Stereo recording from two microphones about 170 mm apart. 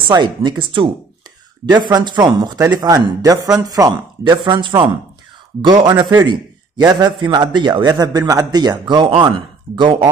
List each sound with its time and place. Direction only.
0.1 s a man's voice: 25° right (ahead or behind)